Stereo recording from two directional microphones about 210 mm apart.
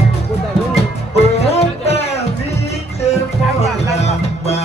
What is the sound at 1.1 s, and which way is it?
Music, 30° left (ahead or behind).